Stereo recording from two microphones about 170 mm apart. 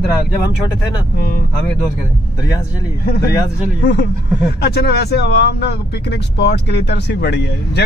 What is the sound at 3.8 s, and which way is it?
Speech, 80° left.